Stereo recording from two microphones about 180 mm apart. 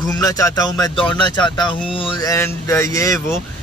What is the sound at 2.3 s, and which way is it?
Speech, 15° left (ahead or behind).